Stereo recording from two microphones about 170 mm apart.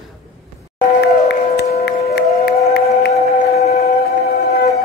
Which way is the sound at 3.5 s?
40° left (ahead or behind).